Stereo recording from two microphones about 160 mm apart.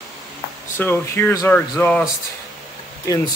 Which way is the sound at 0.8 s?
15° left (ahead or behind).